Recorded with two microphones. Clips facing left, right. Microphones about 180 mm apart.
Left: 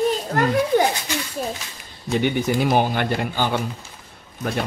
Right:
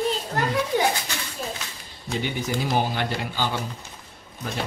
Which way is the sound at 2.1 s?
60° left (ahead or behind).